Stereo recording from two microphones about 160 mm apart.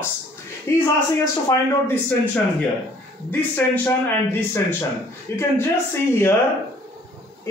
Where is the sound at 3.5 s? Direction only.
10° left (ahead or behind).